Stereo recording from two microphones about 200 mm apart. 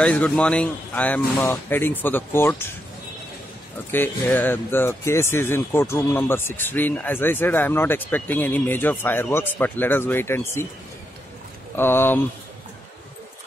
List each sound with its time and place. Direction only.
0.0 s speech: 5° left (ahead or behind)
3.9 s speech: 10° left (ahead or behind)
11.7 s speech: 10° left (ahead or behind)